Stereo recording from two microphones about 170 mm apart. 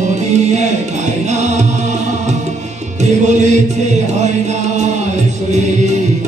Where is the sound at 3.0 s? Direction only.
45° right (ahead or behind).